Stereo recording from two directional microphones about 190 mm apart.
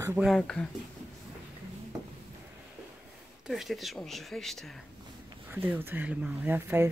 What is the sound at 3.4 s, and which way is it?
Speech, centre (ahead or behind).